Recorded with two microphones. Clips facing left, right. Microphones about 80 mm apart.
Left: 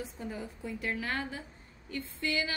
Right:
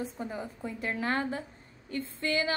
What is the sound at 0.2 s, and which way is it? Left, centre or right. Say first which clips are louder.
A woman's voice: right 3 dB; right.